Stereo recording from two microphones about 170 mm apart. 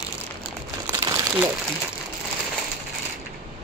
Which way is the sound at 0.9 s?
20° right (ahead or behind).